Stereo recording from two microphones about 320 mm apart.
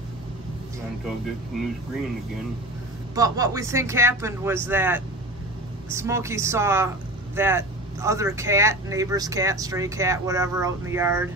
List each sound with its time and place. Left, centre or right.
1.5 s speech: centre
3.2 s speech: centre